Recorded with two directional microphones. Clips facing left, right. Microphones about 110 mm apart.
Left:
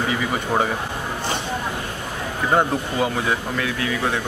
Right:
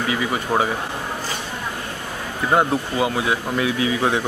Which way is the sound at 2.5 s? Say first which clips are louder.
Right 1 dB; 10° right (ahead or behind).